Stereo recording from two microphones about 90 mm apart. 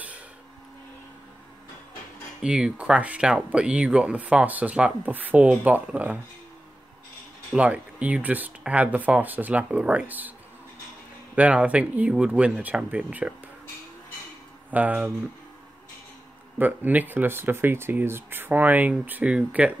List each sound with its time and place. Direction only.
2.4 s speech: 10° right (ahead or behind)
7.5 s speech: 15° right (ahead or behind)
11.3 s speech: 15° right (ahead or behind)
14.7 s speech: 15° right (ahead or behind)
16.5 s speech: 20° right (ahead or behind)